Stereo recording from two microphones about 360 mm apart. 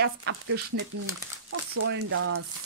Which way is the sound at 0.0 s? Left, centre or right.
Right.